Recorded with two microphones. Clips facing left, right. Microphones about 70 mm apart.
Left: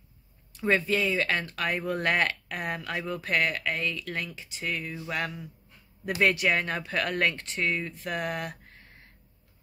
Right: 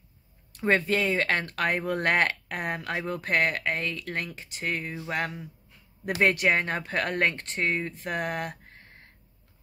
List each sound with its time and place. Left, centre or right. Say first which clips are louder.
0.5 s speech: right 1 dB; right
4.8 s a sound: right 1 dB; right
5.1 s speech: right 2 dB; right